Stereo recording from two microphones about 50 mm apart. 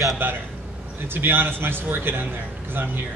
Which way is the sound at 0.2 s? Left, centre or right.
Right.